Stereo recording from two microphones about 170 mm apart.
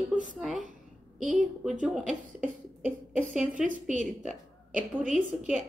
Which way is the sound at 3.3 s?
5° right (ahead or behind).